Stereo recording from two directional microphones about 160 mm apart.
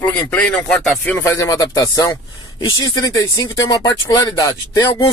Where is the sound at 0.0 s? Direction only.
10° left (ahead or behind).